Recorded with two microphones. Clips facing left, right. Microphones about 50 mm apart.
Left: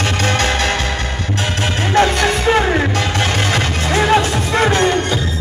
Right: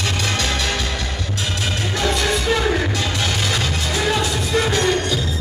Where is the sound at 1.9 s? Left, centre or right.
Left.